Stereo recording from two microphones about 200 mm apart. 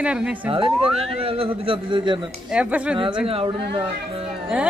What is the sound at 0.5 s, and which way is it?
Speech, 25° right (ahead or behind).